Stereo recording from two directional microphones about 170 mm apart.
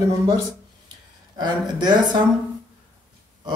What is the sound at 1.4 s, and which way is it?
Speech, 25° right (ahead or behind).